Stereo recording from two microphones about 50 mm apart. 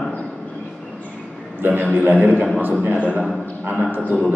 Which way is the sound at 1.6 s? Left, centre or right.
Right.